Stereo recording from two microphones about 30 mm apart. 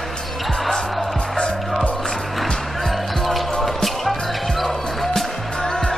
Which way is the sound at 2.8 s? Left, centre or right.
Centre.